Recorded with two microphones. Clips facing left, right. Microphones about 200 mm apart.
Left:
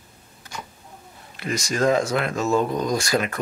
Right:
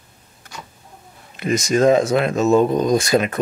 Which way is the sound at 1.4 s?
20° right (ahead or behind).